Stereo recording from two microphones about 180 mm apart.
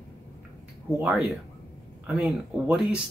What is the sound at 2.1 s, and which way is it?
Speech, 5° right (ahead or behind).